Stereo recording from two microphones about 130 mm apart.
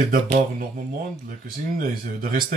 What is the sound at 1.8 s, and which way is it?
Speech, 90° right.